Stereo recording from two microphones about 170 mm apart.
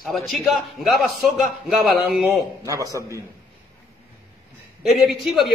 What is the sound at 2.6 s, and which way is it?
Speech, 20° right (ahead or behind).